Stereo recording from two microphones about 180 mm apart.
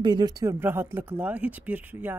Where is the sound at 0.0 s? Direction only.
25° right (ahead or behind).